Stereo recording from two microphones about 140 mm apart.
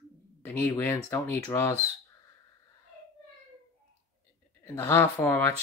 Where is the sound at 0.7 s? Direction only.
15° left (ahead or behind).